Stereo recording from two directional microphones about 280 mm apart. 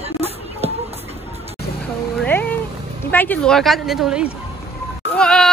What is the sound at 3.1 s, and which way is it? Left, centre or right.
A woman's voice, centre.